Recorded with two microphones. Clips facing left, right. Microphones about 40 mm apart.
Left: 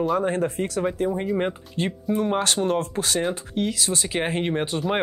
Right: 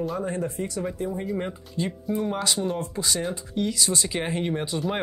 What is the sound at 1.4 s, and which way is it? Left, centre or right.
Speech, left.